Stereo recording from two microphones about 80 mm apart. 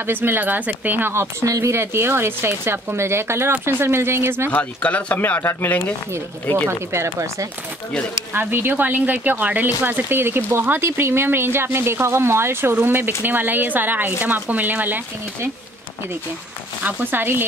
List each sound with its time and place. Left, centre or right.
0.0 s speech: right
4.5 s speech: centre
6.9 s speech: right
8.3 s speech: right
16.8 s speech: right